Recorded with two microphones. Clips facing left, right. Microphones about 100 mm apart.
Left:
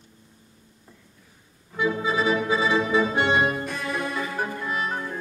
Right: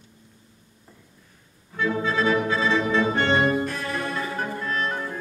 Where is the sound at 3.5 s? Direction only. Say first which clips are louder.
Right 2 dB; centre (ahead or behind).